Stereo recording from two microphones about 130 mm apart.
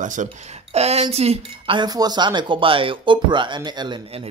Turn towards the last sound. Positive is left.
turn(degrees=-40)  # may be behind; listen again after turning